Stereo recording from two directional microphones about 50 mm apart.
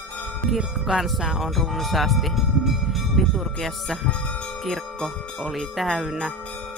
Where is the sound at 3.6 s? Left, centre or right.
Centre.